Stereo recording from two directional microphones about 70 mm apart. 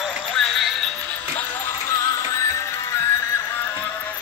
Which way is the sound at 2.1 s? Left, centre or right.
Left.